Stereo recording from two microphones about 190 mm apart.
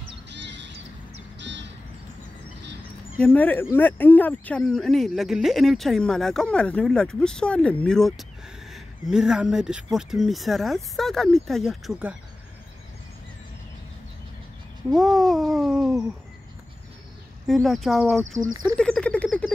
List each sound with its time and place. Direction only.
0.3 s music: 65° right (ahead or behind)
3.2 s speech: 10° left (ahead or behind)
15.1 s speech: centre (ahead or behind)
17.5 s speech: centre (ahead or behind)
18.5 s a sound: 20° right (ahead or behind)
18.8 s frog: 5° left (ahead or behind)